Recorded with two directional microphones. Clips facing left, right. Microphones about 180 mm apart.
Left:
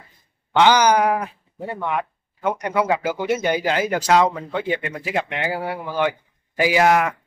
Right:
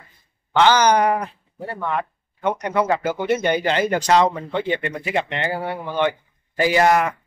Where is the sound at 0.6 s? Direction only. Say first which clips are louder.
Even; 10° left (ahead or behind).